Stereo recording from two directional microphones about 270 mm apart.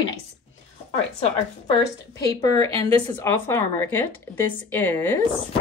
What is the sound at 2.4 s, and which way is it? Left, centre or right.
A woman's voice, centre.